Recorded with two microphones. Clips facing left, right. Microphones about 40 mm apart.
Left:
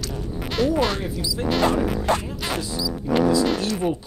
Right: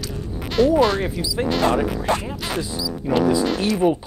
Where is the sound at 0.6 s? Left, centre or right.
Centre.